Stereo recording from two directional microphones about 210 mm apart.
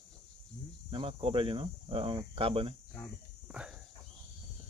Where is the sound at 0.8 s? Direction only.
25° right (ahead or behind).